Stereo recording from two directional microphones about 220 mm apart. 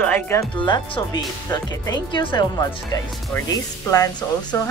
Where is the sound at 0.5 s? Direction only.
20° left (ahead or behind).